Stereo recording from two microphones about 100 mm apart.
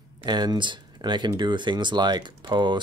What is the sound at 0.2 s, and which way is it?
Speech, 45° right (ahead or behind).